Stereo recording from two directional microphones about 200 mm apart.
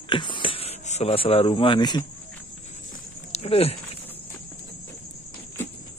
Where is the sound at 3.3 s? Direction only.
30° left (ahead or behind).